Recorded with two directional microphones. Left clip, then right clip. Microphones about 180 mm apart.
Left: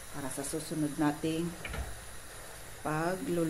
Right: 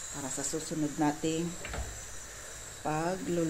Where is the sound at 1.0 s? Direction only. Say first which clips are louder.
Right 2 dB; 10° right (ahead or behind).